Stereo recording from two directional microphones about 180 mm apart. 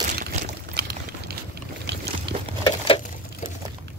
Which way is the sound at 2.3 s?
75° right (ahead or behind).